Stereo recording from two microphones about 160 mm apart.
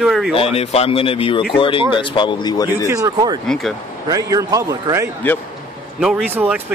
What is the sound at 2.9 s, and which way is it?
Speech, 20° right (ahead or behind).